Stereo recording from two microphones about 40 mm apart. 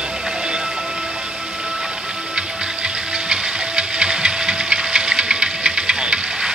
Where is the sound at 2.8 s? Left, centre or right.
Centre.